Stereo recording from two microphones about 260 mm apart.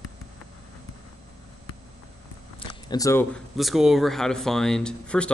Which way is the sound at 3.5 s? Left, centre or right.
Centre.